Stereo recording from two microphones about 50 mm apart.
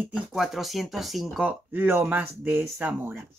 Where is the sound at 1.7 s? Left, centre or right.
Right.